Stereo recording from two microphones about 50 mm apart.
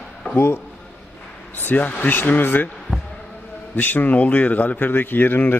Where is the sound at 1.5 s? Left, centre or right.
Left.